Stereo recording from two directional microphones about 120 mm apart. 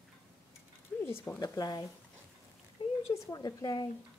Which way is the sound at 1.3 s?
30° left (ahead or behind).